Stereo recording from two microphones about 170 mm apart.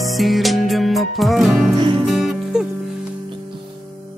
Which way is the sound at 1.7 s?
30° right (ahead or behind).